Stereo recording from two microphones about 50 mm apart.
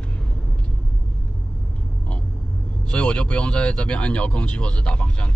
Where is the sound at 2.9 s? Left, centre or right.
Left.